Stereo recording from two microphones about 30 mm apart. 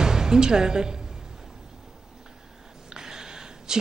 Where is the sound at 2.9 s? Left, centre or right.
Right.